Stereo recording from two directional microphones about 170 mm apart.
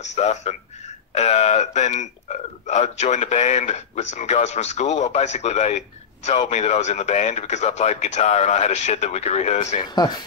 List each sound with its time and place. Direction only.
0.0 s a man's voice: 40° left (ahead or behind)